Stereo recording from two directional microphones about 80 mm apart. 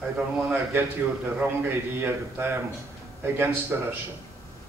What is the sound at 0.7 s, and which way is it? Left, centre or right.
A man's voice, right.